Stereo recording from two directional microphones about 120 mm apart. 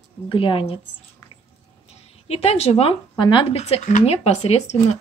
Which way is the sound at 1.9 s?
60° left (ahead or behind).